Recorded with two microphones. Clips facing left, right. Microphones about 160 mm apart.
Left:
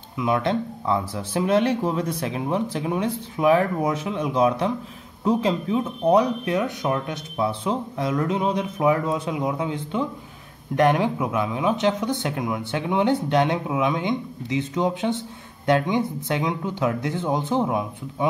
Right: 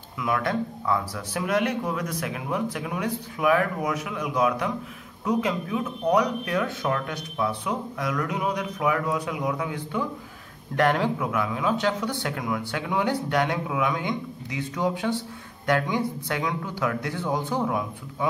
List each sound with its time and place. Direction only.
0.2 s speech: 25° left (ahead or behind)